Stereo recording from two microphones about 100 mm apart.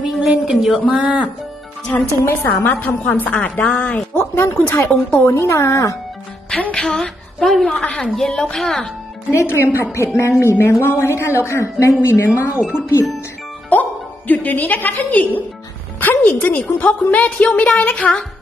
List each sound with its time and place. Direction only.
0.0 s a sound: 5° right (ahead or behind)
0.8 s speech: 15° right (ahead or behind)
2.2 s a woman's voice: 20° left (ahead or behind)
6.6 s a woman's voice: 10° left (ahead or behind)
7.7 s a woman's voice: 15° left (ahead or behind)
9.3 s speech: 25° left (ahead or behind)
13.7 s a woman's voice: 15° left (ahead or behind)